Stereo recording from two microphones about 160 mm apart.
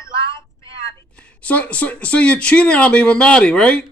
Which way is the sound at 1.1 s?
10° left (ahead or behind).